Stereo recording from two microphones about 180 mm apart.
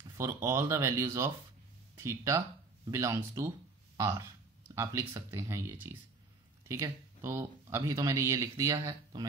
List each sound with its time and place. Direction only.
0.2 s speech: 15° right (ahead or behind)